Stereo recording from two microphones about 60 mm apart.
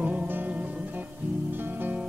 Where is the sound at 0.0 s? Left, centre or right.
Right.